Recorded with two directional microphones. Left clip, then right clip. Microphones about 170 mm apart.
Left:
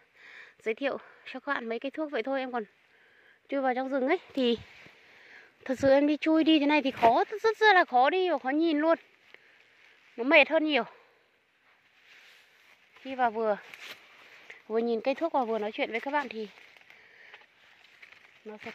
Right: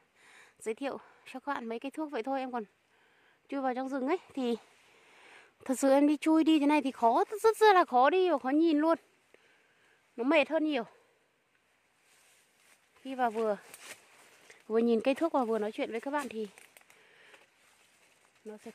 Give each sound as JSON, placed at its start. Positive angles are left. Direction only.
{"t": 0.2, "sound": "a woman's voice", "side_deg": 0}
{"t": 5.3, "sound": "speech", "side_deg": -20}
{"t": 7.3, "sound": "speech", "side_deg": -25}
{"t": 10.2, "sound": "speech", "side_deg": -10}
{"t": 13.0, "sound": "speech", "side_deg": -20}
{"t": 14.7, "sound": "speech", "side_deg": -35}